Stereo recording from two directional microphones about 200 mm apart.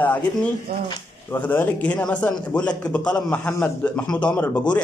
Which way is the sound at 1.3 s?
10° left (ahead or behind).